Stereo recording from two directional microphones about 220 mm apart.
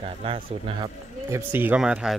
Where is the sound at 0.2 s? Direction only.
25° right (ahead or behind).